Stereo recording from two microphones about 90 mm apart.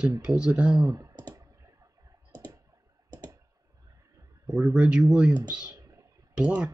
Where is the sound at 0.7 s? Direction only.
35° right (ahead or behind).